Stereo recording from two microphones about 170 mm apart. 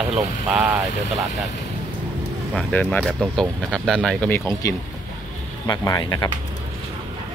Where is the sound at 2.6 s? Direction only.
5° left (ahead or behind); by 6.3 s 20° left (ahead or behind).